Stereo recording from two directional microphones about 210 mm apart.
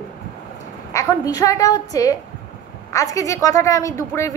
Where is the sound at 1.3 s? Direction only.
15° left (ahead or behind).